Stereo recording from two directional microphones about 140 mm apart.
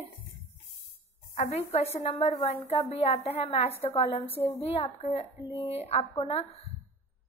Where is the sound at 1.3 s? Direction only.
50° left (ahead or behind).